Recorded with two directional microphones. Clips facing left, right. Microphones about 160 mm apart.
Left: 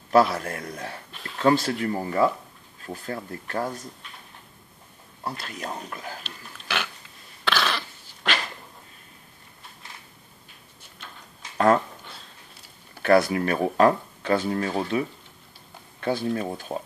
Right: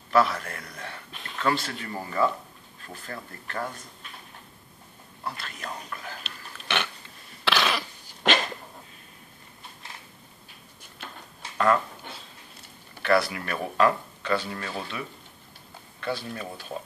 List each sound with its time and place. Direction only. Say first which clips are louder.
0.1 s speech: left 4 dB; 35° left (ahead or behind)
2.9 s speech: left 7 dB; 35° left (ahead or behind)
5.2 s speech: left 3 dB; 35° left (ahead or behind)
6.2 s pig: even; 5° left (ahead or behind)
7.4 s cough: even; 5° right (ahead or behind)
8.2 s dog: right 4 dB; 20° right (ahead or behind)
11.5 s a sound: left 3 dB; 40° left (ahead or behind)
13.0 s speech: left 5 dB; 45° left (ahead or behind)